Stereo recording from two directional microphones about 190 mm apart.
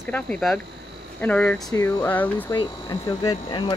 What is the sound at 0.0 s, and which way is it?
A woman's voice, 5° left (ahead or behind).